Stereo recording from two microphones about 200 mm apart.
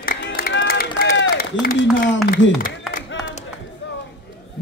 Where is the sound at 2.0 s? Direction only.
60° left (ahead or behind).